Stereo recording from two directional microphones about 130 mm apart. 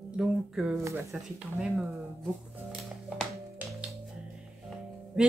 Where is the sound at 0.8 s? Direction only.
20° right (ahead or behind).